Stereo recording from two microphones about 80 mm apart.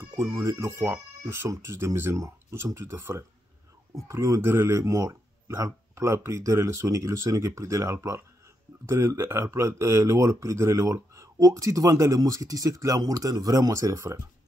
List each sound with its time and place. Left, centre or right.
0.2 s speech: right